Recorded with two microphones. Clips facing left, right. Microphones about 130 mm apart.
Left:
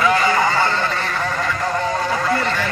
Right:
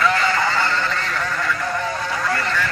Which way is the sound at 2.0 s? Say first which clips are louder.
Left 4 dB; 35° left (ahead or behind).